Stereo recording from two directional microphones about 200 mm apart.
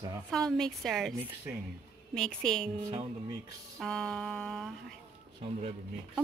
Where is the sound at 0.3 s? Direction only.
5° left (ahead or behind).